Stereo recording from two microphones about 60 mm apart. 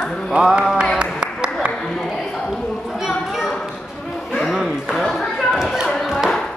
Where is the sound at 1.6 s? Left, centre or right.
Right.